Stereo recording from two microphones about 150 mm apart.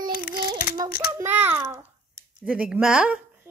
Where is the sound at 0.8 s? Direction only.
90° left.